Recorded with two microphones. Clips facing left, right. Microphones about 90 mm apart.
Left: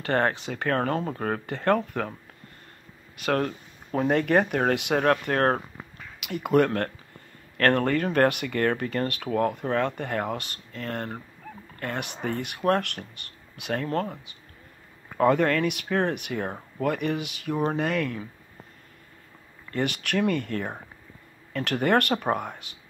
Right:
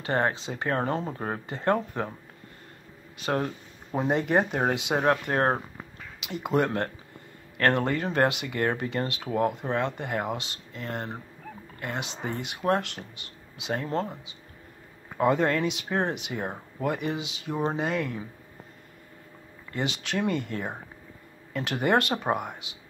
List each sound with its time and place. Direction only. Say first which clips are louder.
0.0 s speech: left 2 dB; 20° right (ahead or behind)
3.2 s speech: left 2 dB; 20° right (ahead or behind)
19.7 s speech: left 3 dB; 20° right (ahead or behind)